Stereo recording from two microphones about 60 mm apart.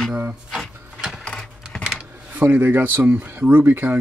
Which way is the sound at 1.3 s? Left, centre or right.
Centre.